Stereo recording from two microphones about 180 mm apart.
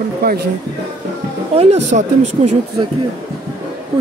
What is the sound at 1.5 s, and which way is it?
Speech, 35° right (ahead or behind).